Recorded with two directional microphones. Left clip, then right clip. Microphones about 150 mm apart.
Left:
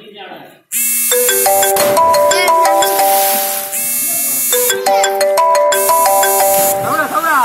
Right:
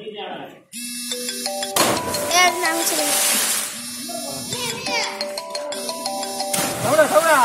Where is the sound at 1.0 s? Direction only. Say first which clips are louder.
Left 15 dB; 40° left (ahead or behind).